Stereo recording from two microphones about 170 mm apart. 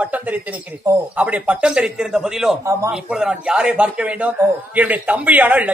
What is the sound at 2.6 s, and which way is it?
Speech, 15° right (ahead or behind).